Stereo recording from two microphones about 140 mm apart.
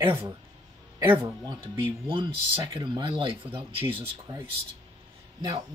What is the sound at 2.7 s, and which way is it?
Speech, 35° right (ahead or behind).